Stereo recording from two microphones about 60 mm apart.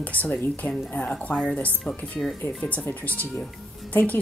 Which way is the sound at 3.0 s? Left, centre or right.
Left.